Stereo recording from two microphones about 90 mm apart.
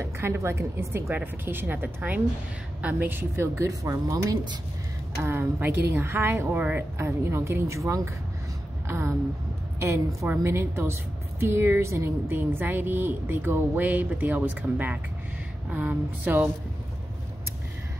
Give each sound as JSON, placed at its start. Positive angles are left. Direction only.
{"t": 0.0, "sound": "a woman's voice", "side_deg": -30}
{"t": 5.2, "sound": "a woman's voice", "side_deg": -25}